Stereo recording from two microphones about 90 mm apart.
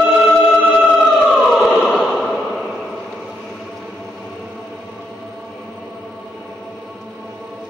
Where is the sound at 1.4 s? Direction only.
5° right (ahead or behind).